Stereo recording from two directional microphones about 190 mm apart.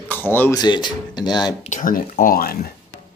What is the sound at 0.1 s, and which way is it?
Speech, 10° left (ahead or behind).